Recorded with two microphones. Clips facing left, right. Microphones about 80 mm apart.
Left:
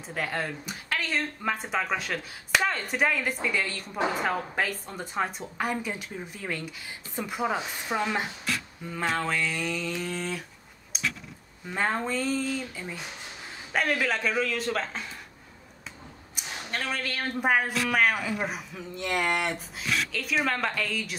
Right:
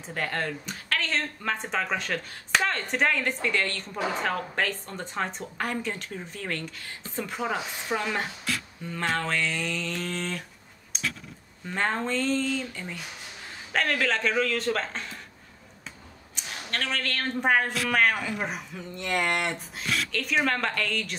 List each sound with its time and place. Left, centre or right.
0.0 s speech: centre
10.9 s a sound: centre
11.6 s speech: centre
16.3 s speech: centre